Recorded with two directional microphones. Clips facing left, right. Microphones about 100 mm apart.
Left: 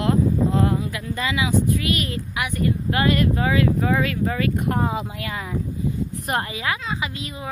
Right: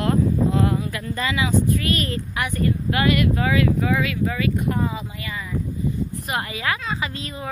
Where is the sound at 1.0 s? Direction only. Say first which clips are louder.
Even; 15° left (ahead or behind).